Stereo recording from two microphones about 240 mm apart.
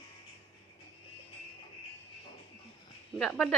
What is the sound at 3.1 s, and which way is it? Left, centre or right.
Speech, centre.